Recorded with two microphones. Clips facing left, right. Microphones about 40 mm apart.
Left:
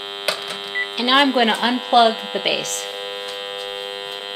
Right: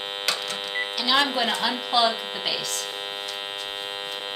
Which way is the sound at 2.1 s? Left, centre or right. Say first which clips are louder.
Left 6 dB; centre.